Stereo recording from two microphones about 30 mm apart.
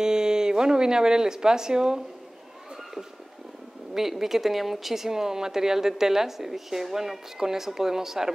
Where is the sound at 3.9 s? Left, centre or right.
Centre.